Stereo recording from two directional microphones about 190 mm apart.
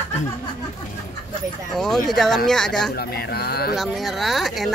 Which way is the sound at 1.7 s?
Centre (ahead or behind).